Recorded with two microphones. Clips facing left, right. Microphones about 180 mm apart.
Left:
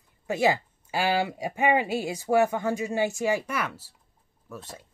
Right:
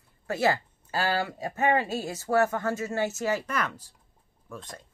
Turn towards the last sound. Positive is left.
turn(degrees=5)  # may be behind; listen again after turning